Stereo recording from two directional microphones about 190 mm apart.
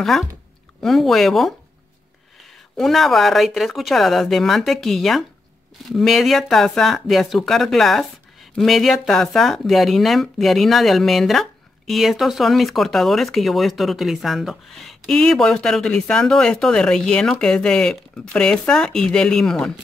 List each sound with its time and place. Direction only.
0.0 s speech: centre (ahead or behind)
2.8 s speech: centre (ahead or behind)